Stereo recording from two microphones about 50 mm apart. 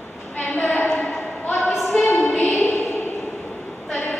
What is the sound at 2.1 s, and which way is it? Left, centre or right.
Music, left.